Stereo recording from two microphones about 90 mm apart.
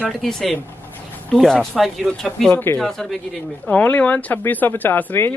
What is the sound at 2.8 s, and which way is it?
Speech, 5° left (ahead or behind).